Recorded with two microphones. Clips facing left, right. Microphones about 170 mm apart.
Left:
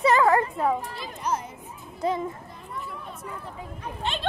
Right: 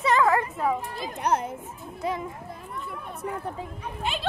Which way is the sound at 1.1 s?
60° right (ahead or behind).